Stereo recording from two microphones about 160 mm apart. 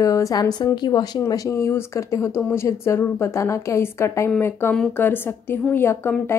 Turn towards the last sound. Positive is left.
turn(degrees=15)  # may be behind; listen again after turning